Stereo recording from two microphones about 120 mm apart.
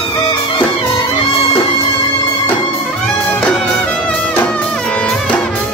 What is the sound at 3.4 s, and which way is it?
Music, 10° left (ahead or behind).